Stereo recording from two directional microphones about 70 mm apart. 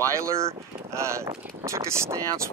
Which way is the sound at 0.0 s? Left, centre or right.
Right.